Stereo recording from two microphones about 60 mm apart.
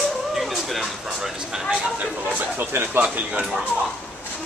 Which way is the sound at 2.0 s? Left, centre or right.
Right.